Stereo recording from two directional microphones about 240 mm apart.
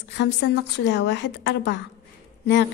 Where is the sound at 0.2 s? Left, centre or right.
Left.